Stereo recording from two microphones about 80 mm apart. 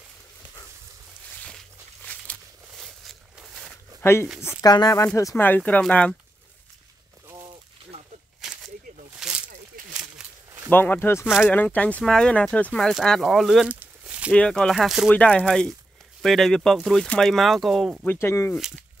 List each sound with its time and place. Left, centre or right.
2.7 s a sound: centre
4.0 s speech: left
4.6 s speech: left
4.9 s speech: left
5.7 s speech: centre
9.2 s a sound: centre
10.7 s speech: left
12.0 s speech: centre
12.9 s speech: centre
13.7 s a sound: centre
14.3 s speech: centre
15.0 s speech: centre
18.0 s speech: left